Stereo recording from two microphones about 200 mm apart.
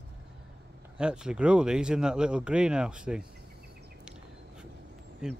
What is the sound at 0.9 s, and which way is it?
Speech, 5° right (ahead or behind).